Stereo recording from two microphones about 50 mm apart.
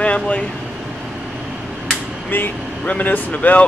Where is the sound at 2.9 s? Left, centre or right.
Left.